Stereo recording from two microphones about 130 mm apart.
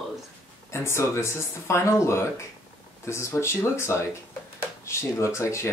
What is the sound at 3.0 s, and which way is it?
Speech, 20° left (ahead or behind).